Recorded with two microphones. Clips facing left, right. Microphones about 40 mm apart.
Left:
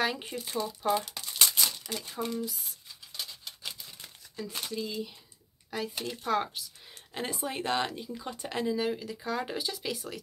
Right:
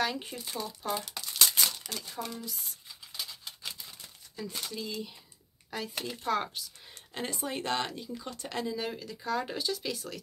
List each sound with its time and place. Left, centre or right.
0.0 s speech: centre
1.5 s crumpling: centre
2.0 s speech: centre
2.4 s speech: centre
3.2 s scissors: centre
4.6 s speech: centre